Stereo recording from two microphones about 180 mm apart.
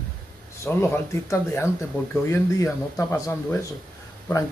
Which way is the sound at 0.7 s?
15° left (ahead or behind).